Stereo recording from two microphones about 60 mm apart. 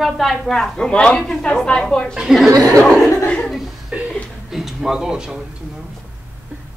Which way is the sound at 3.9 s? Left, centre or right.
Right.